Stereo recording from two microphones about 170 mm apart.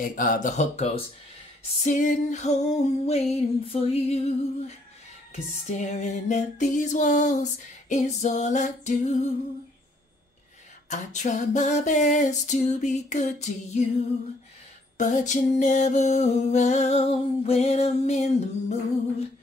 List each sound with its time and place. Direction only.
0.0 s music: 55° left (ahead or behind); by 1.0 s 35° left (ahead or behind)
1.9 s music: 50° left (ahead or behind)
10.9 s music: 45° left (ahead or behind)
15.0 s music: 45° left (ahead or behind)